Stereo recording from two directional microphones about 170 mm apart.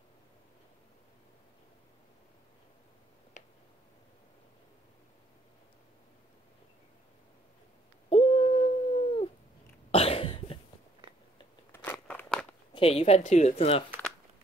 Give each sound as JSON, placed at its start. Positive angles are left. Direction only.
{"t": 3.4, "sound": "a sound", "side_deg": 45}
{"t": 8.1, "sound": "dog", "side_deg": 35}
{"t": 9.8, "sound": "cough", "side_deg": 35}
{"t": 11.7, "sound": "crunch", "side_deg": 10}
{"t": 12.7, "sound": "speech", "side_deg": 35}